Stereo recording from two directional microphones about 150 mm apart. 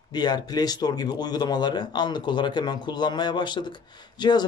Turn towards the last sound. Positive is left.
turn(degrees=30)  # may be behind; listen again after turning